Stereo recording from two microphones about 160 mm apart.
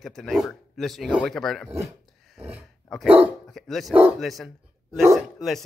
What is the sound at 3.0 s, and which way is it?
Speech, 10° right (ahead or behind).